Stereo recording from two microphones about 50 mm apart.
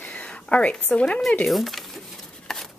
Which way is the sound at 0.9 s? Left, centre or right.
Left.